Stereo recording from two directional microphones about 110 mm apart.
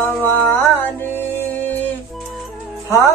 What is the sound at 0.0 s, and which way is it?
Music, 20° left (ahead or behind).